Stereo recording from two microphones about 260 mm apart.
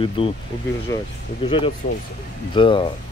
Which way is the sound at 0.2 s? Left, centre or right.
Left.